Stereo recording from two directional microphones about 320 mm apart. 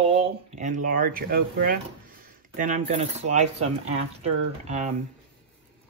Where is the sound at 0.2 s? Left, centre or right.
Right.